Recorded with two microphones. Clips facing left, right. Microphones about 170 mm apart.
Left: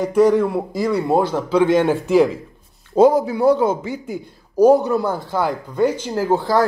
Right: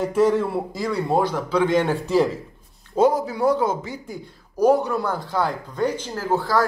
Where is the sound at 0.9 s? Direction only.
20° left (ahead or behind).